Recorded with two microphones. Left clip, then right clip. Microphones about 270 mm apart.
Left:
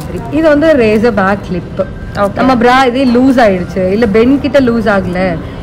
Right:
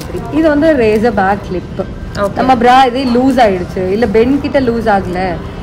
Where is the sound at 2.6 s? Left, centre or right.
Left.